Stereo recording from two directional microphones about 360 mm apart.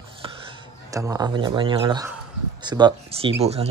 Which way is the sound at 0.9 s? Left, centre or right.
Centre.